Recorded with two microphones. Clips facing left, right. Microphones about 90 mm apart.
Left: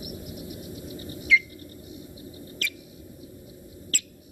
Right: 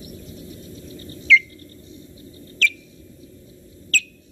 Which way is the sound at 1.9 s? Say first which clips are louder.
Even; 15° left (ahead or behind).